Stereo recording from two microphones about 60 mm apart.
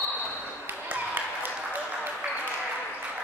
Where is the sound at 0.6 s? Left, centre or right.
Right.